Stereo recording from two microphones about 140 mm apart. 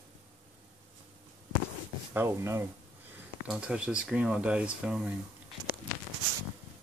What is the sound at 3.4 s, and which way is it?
Speech, 5° right (ahead or behind).